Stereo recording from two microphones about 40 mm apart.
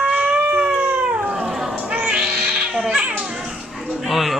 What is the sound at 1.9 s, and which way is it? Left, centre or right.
Cat, right.